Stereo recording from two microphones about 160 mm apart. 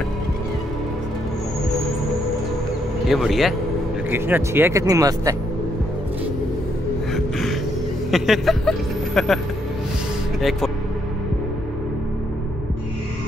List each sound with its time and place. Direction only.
3.1 s speech: centre (ahead or behind)
4.1 s speech: 15° right (ahead or behind)
7.2 s music: centre (ahead or behind)
8.1 s speech: centre (ahead or behind)